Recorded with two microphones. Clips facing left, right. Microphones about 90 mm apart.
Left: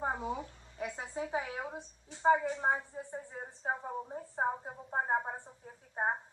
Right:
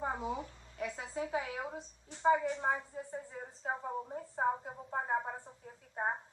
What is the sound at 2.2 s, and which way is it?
A woman's voice, 35° left (ahead or behind).